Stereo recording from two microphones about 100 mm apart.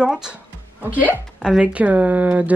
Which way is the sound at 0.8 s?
15° right (ahead or behind).